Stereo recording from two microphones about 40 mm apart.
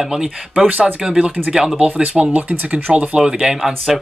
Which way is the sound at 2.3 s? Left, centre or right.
Right.